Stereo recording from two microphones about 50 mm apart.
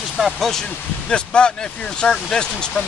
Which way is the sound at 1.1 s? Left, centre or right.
Centre.